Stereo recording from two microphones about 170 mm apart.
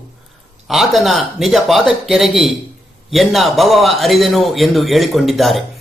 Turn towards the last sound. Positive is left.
turn(degrees=0)  # may be behind; listen again after turning